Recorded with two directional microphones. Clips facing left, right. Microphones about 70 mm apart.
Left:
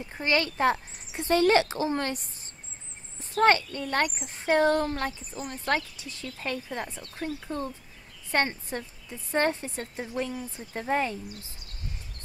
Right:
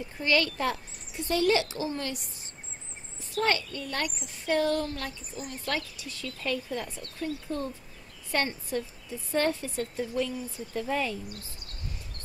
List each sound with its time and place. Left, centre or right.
0.2 s speech: left
1.1 s a woman's voice: left